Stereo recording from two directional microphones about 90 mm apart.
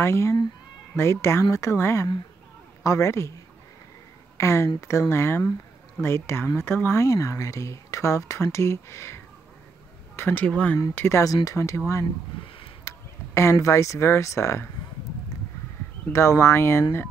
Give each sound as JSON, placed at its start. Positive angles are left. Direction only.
{"t": 0.0, "sound": "speech", "side_deg": 30}
{"t": 4.4, "sound": "speech", "side_deg": 30}
{"t": 11.0, "sound": "speech", "side_deg": 30}
{"t": 12.8, "sound": "speech", "side_deg": 30}
{"t": 16.1, "sound": "speech", "side_deg": 30}